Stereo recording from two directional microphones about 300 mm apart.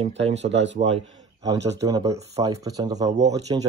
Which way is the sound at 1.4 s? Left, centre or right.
Centre.